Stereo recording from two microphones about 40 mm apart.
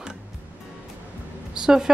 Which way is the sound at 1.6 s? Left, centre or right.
Centre.